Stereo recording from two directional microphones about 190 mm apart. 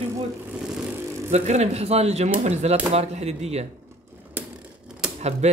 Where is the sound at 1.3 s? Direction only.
35° right (ahead or behind).